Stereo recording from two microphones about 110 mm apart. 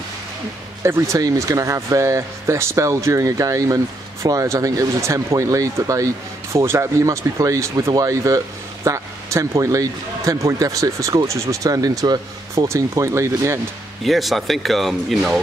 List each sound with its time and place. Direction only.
0.8 s speech: 25° right (ahead or behind)
14.0 s speech: centre (ahead or behind)